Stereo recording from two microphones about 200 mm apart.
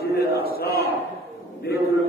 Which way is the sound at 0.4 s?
50° left (ahead or behind).